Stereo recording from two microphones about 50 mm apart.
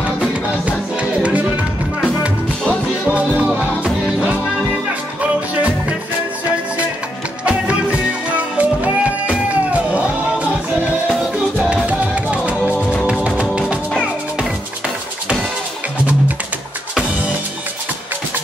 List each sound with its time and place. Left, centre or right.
0.7 s music: right
3.1 s music: right
7.4 s music: right
11.7 s music: right